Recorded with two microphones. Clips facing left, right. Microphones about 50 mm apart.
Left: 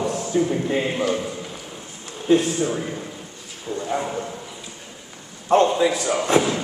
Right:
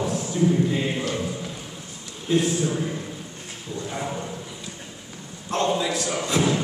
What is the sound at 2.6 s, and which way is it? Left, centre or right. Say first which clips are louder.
A man's voice: left 1 dB; centre.